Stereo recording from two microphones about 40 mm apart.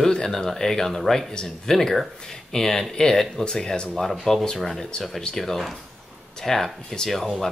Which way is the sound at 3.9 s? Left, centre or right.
Centre.